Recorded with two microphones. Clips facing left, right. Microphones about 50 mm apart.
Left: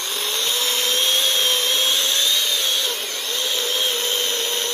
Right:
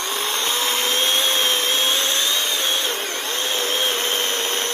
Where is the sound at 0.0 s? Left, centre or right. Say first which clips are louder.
Right 2 dB; right.